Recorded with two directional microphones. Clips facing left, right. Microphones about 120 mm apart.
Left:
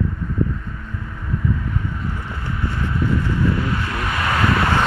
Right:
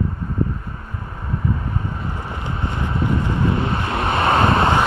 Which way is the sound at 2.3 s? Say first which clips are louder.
Right 1 dB; 20° right (ahead or behind).